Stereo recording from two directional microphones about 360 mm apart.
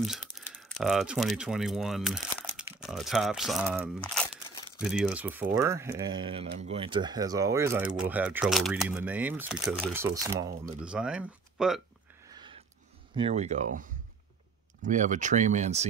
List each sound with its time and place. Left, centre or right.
0.0 s speech: centre
12.3 s a sound: centre
13.1 s speech: centre